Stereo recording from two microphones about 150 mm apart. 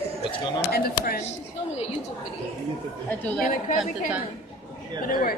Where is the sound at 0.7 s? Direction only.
85° left.